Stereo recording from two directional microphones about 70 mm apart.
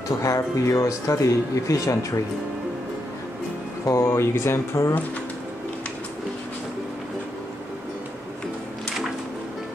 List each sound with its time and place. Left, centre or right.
0.2 s speech: left
3.8 s speech: left